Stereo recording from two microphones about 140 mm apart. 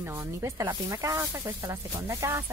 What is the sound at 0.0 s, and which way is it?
Speech, 20° right (ahead or behind).